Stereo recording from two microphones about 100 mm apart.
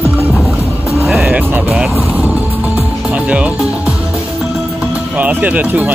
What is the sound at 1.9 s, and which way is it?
Vehicle, 30° left (ahead or behind).